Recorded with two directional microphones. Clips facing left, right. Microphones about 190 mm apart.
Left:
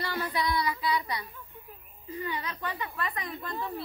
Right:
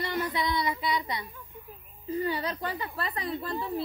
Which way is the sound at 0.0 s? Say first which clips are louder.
Right 1 dB; 25° right (ahead or behind).